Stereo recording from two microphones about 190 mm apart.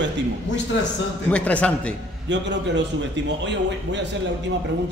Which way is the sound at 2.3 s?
70° right (ahead or behind).